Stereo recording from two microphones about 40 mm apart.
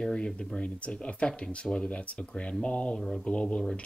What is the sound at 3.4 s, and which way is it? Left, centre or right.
Speech, centre.